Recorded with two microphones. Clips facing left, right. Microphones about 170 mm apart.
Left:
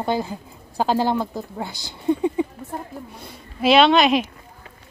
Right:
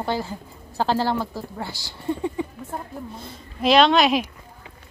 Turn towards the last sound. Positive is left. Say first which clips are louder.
# left 2 dB
turn(degrees=0)  # may be behind; listen again after turning